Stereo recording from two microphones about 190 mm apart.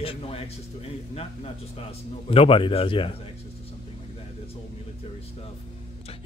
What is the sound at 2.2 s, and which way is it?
Speech, 30° left (ahead or behind).